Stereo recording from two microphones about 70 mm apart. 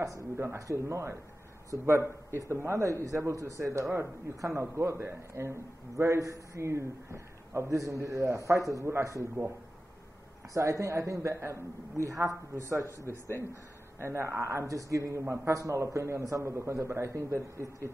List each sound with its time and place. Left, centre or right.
0.4 s a man's voice: right
10.5 s a man's voice: right
13.9 s a man's voice: right